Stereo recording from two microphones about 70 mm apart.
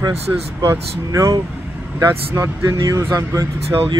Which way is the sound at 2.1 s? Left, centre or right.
Right.